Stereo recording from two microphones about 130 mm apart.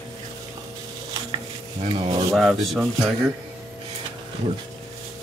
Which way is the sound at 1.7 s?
50° right (ahead or behind).